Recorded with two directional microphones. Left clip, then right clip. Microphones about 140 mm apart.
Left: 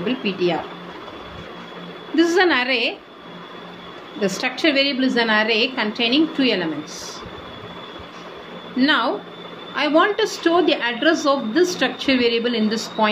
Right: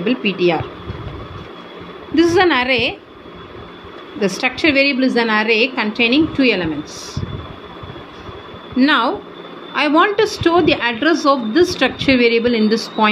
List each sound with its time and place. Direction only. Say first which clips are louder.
0.0 s a woman's voice: right 5 dB; 45° right (ahead or behind)
2.1 s a woman's voice: right 3 dB; 40° right (ahead or behind)
4.2 s a woman's voice: right 4 dB; 40° right (ahead or behind)
8.7 s a woman's voice: right 4 dB; 45° right (ahead or behind)